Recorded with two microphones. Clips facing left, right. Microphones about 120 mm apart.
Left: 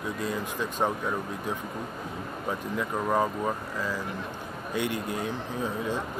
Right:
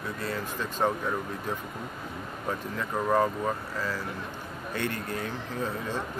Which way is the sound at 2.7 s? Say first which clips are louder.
Right 1 dB; 10° left (ahead or behind).